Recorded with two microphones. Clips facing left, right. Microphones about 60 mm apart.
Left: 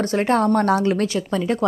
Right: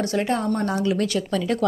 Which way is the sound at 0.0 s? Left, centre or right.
Left.